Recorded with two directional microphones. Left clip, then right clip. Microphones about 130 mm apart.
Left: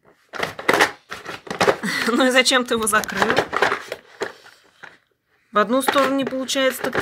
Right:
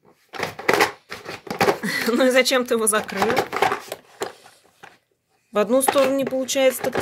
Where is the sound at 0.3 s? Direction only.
25° right (ahead or behind).